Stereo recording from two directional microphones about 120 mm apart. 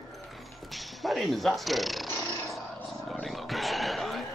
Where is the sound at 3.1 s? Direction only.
Centre (ahead or behind).